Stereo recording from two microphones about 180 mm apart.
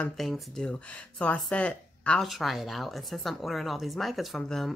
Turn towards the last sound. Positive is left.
turn(degrees=0)  # may be behind; listen again after turning